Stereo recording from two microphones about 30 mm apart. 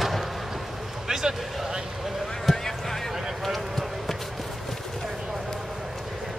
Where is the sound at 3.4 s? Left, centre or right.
Centre.